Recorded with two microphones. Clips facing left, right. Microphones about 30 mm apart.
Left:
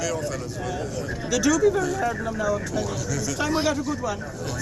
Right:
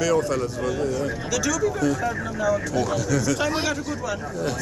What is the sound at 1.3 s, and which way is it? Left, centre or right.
Speech, centre.